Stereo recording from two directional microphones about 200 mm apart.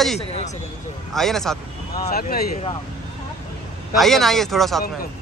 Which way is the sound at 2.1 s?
50° left (ahead or behind).